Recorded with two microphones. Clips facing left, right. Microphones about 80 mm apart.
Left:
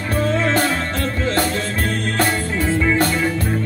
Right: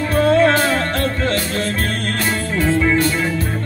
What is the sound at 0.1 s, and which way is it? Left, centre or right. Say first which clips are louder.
Music: right 6 dB; right.